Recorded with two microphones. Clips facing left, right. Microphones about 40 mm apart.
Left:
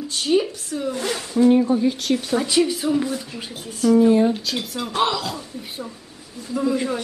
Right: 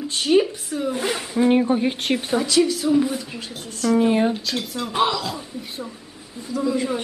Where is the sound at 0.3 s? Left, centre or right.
Centre.